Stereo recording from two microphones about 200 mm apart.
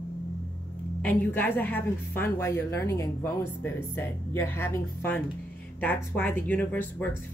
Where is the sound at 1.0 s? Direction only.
10° left (ahead or behind).